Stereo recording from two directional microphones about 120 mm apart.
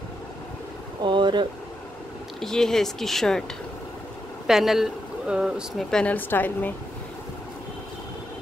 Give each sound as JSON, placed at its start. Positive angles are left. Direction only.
{"t": 1.0, "sound": "speech", "side_deg": -40}
{"t": 2.4, "sound": "speech", "side_deg": 5}
{"t": 4.5, "sound": "speech", "side_deg": 0}
{"t": 5.9, "sound": "a woman's voice", "side_deg": 10}